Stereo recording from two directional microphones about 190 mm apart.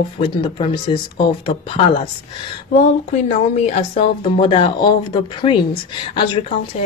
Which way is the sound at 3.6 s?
35° left (ahead or behind).